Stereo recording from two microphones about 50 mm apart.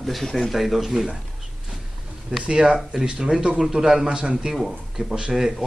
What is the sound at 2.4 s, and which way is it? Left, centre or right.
Speech, centre.